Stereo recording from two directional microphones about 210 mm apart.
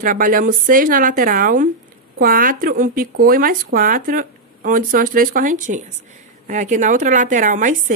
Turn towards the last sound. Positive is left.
turn(degrees=-40)  # may be behind; listen again after turning